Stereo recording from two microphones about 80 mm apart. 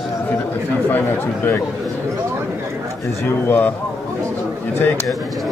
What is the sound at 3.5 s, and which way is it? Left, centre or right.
Speech, left.